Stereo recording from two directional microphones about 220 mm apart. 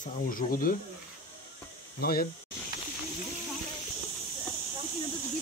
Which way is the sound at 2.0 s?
45° left (ahead or behind).